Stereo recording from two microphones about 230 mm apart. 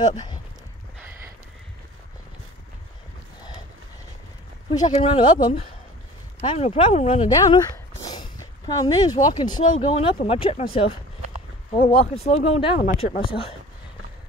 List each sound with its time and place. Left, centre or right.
4.6 s speech: centre
7.2 s speech: centre
11.9 s speech: left